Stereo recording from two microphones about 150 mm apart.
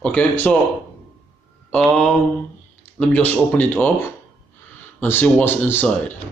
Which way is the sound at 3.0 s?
10° left (ahead or behind).